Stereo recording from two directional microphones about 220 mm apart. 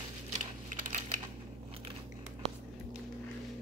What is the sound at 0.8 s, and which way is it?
Typing, 35° right (ahead or behind).